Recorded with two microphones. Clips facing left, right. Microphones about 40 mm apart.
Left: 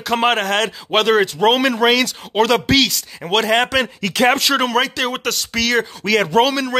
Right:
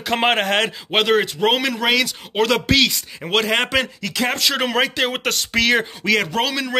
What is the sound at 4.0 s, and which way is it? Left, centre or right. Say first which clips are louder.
Speech: left 6 dB; left.